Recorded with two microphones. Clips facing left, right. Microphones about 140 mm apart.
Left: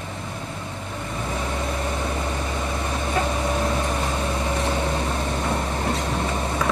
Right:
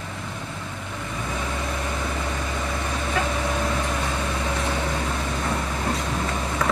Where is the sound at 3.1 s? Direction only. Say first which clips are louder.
Left 2 dB; 25° left (ahead or behind).